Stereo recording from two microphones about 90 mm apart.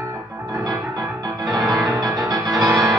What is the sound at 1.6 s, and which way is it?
Music, centre (ahead or behind).